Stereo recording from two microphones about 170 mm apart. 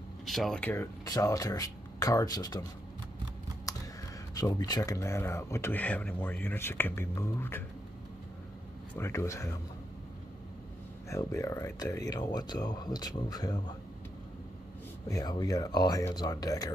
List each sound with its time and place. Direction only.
0.2 s speech: centre (ahead or behind)
1.0 s speech: 20° left (ahead or behind)
3.7 s computer keyboard: 20° left (ahead or behind)
4.4 s speech: 20° left (ahead or behind)
8.9 s speech: 15° left (ahead or behind)
11.1 s speech: 15° left (ahead or behind)
15.0 s speech: 20° left (ahead or behind)